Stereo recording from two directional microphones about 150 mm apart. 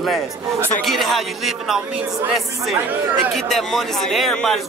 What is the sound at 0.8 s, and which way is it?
Speech, centre (ahead or behind).